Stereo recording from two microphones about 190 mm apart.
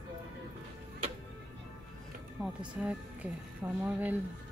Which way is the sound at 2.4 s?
Centre (ahead or behind).